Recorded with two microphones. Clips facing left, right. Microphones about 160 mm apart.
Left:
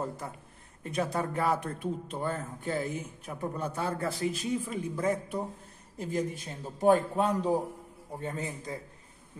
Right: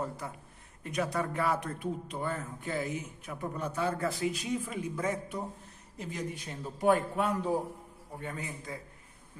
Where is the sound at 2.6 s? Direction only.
35° left (ahead or behind).